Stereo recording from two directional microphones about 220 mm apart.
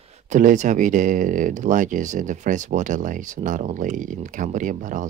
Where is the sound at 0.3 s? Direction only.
35° right (ahead or behind).